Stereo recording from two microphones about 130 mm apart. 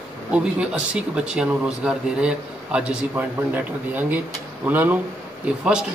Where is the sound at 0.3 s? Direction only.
10° right (ahead or behind).